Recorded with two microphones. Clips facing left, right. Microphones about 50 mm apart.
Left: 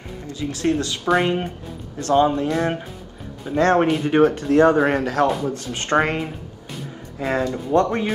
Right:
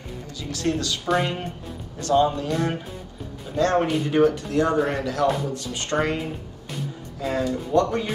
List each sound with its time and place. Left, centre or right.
0.4 s speech: left
3.5 s speech: left